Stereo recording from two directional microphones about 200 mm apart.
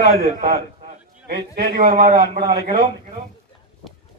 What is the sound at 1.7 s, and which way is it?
Speech, 45° right (ahead or behind).